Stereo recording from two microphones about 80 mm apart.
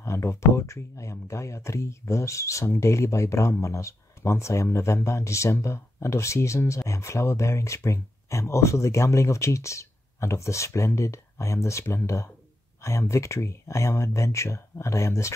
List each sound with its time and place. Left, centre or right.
0.0 s speech: left